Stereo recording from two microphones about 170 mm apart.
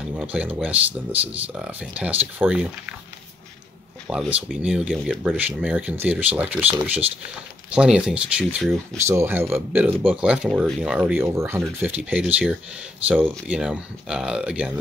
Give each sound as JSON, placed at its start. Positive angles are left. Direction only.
{"t": 0.1, "sound": "speech", "side_deg": -5}
{"t": 4.1, "sound": "speech", "side_deg": -5}